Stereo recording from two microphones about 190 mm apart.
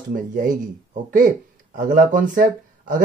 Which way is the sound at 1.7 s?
45° right (ahead or behind).